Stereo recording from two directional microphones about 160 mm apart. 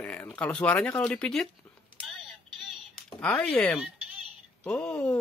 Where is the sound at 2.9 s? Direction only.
5° left (ahead or behind).